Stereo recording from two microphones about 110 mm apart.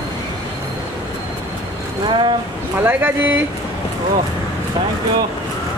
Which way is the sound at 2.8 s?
15° right (ahead or behind).